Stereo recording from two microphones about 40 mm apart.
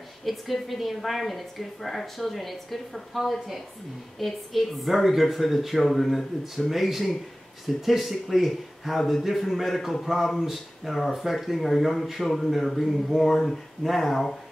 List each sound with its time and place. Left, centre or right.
0.2 s a woman's voice: centre